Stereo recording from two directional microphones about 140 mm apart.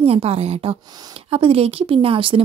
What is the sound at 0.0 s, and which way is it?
A woman's voice, 45° right (ahead or behind).